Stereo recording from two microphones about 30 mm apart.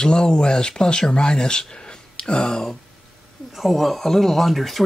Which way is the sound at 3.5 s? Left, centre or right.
Centre.